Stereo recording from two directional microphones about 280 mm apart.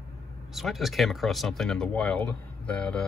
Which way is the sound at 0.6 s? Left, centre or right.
Centre.